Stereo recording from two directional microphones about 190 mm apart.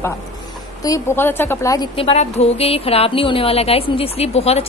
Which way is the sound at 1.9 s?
30° left (ahead or behind).